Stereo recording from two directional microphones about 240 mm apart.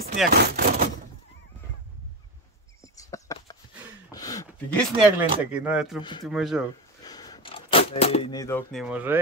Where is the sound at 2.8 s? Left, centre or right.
Centre.